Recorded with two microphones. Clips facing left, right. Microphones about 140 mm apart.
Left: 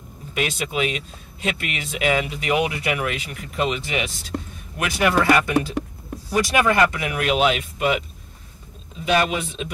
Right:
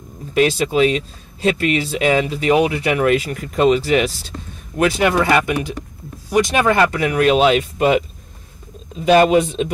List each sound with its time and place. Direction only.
0.3 s speech: 35° right (ahead or behind)
3.1 s speech: 40° right (ahead or behind)
9.0 s speech: 45° right (ahead or behind)